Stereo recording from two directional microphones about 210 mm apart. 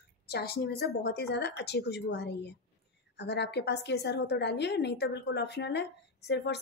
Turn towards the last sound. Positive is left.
turn(degrees=55)  # may be behind; listen again after turning